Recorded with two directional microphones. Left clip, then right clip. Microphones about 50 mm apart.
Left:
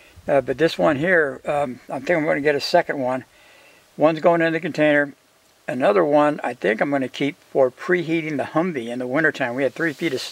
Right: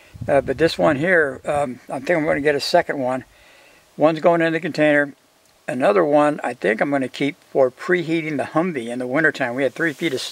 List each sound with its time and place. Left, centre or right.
0.3 s speech: centre